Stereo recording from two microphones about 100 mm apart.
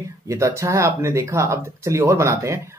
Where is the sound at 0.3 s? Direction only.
30° right (ahead or behind).